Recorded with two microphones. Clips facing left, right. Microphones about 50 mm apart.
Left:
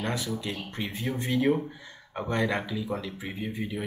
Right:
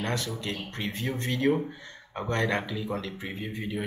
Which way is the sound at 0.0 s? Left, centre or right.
Centre.